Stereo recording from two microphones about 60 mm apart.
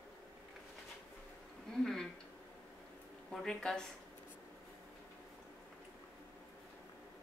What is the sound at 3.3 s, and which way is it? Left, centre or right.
Speech, centre.